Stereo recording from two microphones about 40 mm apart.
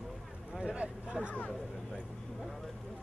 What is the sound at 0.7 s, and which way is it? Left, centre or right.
Speech, right.